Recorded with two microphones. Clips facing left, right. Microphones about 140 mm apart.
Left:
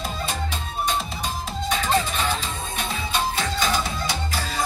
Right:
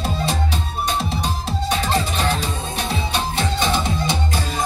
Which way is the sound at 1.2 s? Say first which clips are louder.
Right 4 dB; 35° right (ahead or behind).